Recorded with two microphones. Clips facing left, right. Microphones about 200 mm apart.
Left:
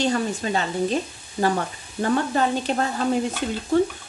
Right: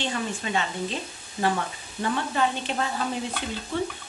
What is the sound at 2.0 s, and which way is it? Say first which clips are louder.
Speech: left 5 dB; 45° left (ahead or behind).